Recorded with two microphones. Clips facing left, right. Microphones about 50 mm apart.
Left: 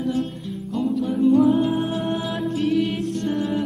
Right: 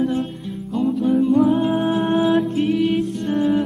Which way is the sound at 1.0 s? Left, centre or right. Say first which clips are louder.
Right 1 dB; centre.